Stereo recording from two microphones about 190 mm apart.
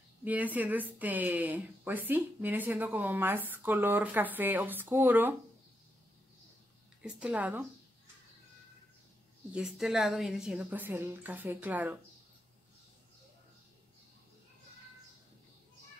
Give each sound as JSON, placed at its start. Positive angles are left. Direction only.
{"t": 0.2, "sound": "speech", "side_deg": -10}
{"t": 7.0, "sound": "speech", "side_deg": -5}
{"t": 9.5, "sound": "speech", "side_deg": -5}